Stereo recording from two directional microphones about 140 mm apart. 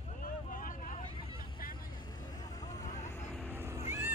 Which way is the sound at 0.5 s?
75° left (ahead or behind).